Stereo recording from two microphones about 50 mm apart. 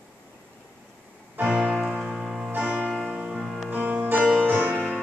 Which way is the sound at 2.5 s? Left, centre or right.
Right.